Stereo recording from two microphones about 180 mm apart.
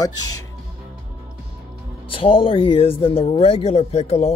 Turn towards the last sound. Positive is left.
turn(degrees=35)  # may be behind; listen again after turning